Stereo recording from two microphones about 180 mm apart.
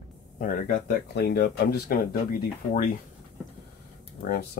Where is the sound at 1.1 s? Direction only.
70° left (ahead or behind).